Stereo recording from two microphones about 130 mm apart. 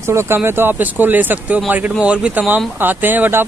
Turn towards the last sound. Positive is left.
turn(degrees=-15)  # may be behind; listen again after turning